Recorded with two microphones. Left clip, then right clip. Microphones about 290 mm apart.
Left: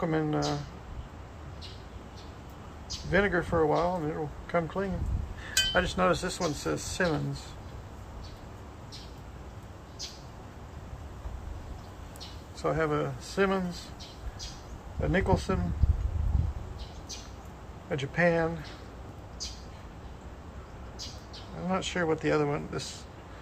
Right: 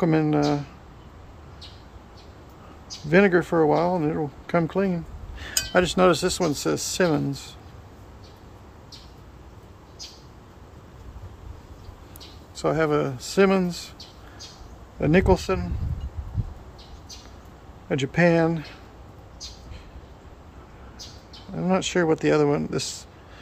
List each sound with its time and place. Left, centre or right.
0.0 s speech: right
3.1 s speech: right
12.5 s speech: right
15.0 s speech: right
17.8 s speech: right
21.6 s speech: right